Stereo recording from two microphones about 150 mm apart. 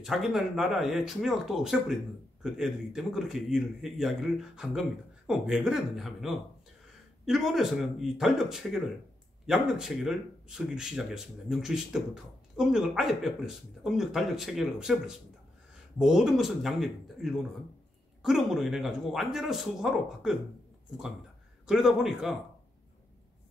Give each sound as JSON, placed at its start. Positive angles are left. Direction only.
{"t": 0.0, "sound": "speech", "side_deg": 0}
{"t": 21.6, "sound": "speech", "side_deg": -5}